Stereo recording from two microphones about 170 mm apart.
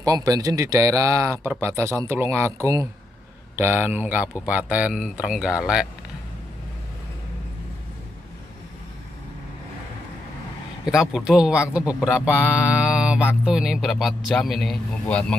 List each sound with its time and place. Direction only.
0.0 s speech: 20° right (ahead or behind); by 5.9 s 5° right (ahead or behind)
10.9 s a man's voice: 5° right (ahead or behind)